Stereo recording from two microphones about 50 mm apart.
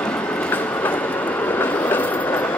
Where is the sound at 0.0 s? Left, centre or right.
Left.